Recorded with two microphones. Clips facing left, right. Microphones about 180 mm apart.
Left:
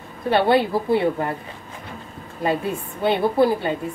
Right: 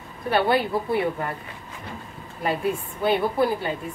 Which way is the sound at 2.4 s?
25° left (ahead or behind).